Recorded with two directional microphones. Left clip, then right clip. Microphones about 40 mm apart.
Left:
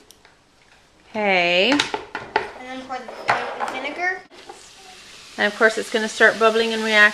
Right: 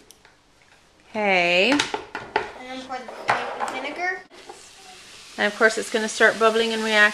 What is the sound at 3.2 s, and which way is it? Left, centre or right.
Chop, centre.